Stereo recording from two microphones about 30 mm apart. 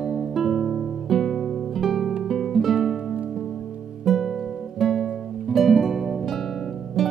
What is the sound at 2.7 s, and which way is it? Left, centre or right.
Music, centre.